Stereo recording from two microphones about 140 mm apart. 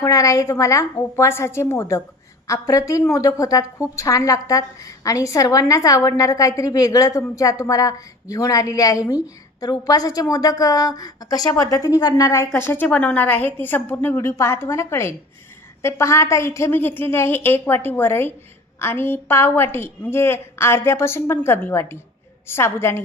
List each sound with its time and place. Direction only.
0.0 s a woman's voice: 25° left (ahead or behind)